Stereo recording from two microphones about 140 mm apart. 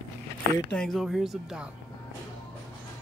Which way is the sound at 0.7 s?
Centre (ahead or behind).